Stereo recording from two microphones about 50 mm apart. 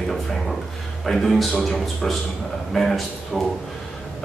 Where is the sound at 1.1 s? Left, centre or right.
Centre.